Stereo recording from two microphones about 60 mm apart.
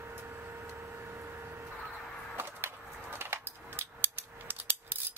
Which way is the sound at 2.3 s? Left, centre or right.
Right.